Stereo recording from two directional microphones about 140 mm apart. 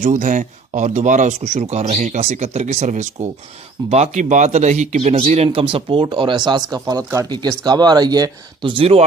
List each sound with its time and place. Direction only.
0.0 s speech: 70° right (ahead or behind); by 9.0 s 40° right (ahead or behind)